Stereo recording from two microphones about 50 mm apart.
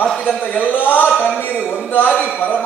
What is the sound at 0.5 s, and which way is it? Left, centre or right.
Speech, left.